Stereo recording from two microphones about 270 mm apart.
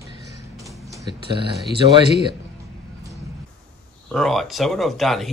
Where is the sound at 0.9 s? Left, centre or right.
Centre.